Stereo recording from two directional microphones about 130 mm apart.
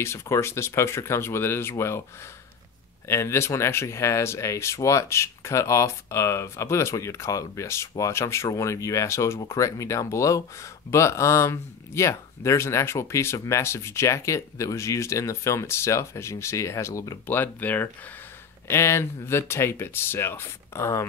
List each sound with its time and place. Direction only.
0.0 s speech: 20° left (ahead or behind)
3.1 s speech: 20° left (ahead or behind)
17.3 s speech: 15° left (ahead or behind)